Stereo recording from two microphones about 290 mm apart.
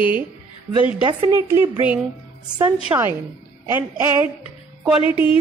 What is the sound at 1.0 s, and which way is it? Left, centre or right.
A woman's voice, centre.